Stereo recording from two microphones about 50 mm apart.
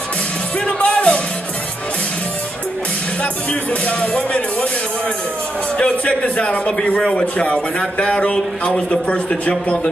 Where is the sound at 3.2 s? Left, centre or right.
Left.